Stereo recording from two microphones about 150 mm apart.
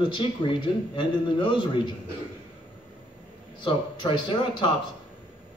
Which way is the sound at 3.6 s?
35° left (ahead or behind).